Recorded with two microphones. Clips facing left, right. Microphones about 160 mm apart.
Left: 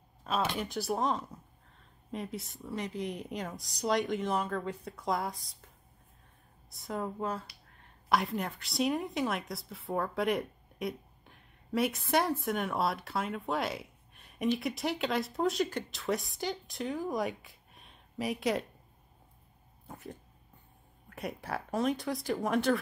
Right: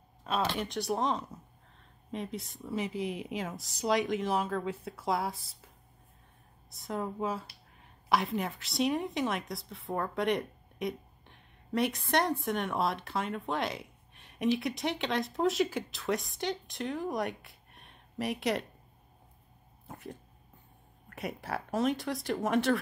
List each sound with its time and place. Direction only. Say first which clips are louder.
0.2 s a woman's voice: right 1 dB; centre (ahead or behind)
6.7 s a woman's voice: right 1 dB; centre (ahead or behind)
19.9 s dog: right 1 dB; centre (ahead or behind)
21.1 s a woman's voice: right 1 dB; centre (ahead or behind)